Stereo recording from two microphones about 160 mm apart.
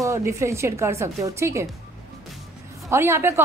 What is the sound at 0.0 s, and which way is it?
A woman's voice, 20° right (ahead or behind).